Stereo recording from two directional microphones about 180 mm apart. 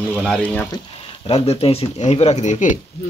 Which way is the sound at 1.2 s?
35° left (ahead or behind).